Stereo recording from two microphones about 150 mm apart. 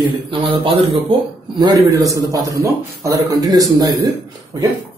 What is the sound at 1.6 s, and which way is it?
A man's voice, 25° right (ahead or behind).